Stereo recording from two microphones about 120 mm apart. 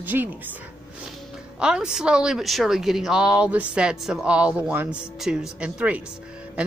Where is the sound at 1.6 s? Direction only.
5° right (ahead or behind).